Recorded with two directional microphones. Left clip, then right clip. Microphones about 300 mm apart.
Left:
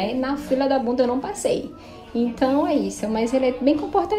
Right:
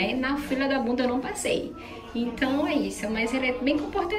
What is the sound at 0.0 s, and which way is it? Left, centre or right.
A woman's voice, centre.